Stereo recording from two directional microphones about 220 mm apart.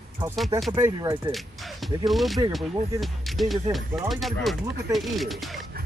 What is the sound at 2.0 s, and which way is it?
Speech, centre (ahead or behind).